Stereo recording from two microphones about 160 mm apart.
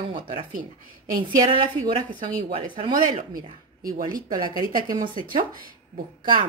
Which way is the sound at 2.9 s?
60° right (ahead or behind).